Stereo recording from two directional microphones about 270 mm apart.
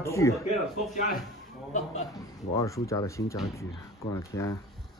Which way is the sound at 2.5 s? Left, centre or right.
Centre.